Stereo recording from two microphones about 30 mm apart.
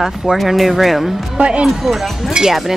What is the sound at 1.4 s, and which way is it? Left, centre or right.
Speech, right.